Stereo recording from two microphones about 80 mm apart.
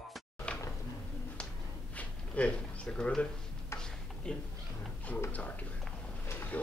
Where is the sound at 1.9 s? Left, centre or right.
Centre.